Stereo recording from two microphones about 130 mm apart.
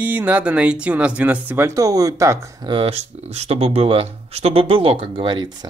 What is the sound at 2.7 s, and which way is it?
Speech, 50° right (ahead or behind).